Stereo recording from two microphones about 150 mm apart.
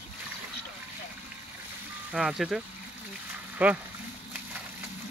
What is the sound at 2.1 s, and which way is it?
Speech, 5° right (ahead or behind).